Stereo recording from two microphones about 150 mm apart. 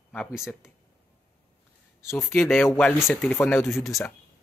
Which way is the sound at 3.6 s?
Centre (ahead or behind).